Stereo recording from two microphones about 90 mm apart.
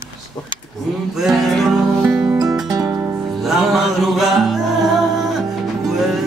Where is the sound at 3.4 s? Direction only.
Centre (ahead or behind).